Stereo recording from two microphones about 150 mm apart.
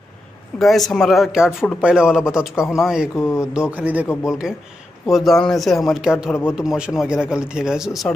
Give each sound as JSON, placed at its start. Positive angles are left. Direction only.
{"t": 0.6, "sound": "speech", "side_deg": 0}
{"t": 3.2, "sound": "speech", "side_deg": 15}
{"t": 3.5, "sound": "a man's voice", "side_deg": -10}